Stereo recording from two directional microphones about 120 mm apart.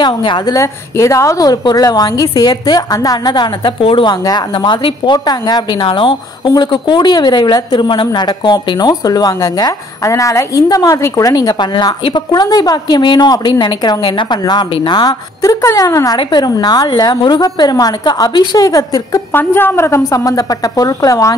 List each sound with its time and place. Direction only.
0.0 s speech: 40° left (ahead or behind)
0.6 s speech: 25° left (ahead or behind)
3.8 s a woman's voice: 45° left (ahead or behind)
4.1 s speech: 35° left (ahead or behind)
19.3 s a woman's voice: 20° left (ahead or behind)